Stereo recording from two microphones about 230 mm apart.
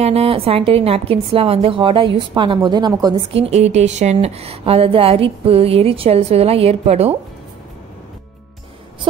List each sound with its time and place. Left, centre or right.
0.0 s a woman's voice: right